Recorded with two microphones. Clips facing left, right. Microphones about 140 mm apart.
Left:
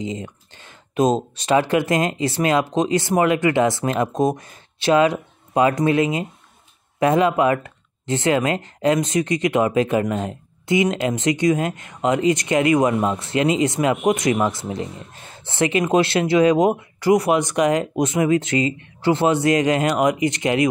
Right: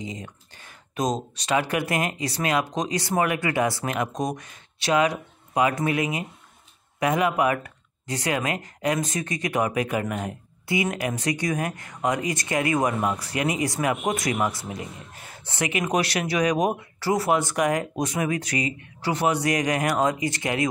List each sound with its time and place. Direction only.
0.0 s speech: 25° left (ahead or behind)